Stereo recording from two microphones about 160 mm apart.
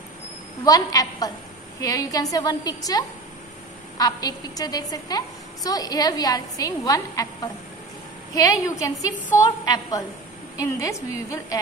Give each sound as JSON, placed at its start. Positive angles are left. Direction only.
{"t": 0.7, "sound": "a woman's voice", "side_deg": 20}
{"t": 8.4, "sound": "a woman's voice", "side_deg": 20}